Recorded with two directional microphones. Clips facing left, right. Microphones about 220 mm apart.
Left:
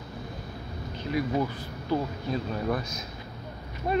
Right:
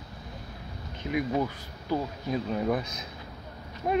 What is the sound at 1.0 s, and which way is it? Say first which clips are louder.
Speech: even; 10° right (ahead or behind).